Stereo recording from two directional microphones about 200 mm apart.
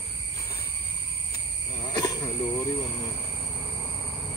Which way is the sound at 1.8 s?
20° left (ahead or behind).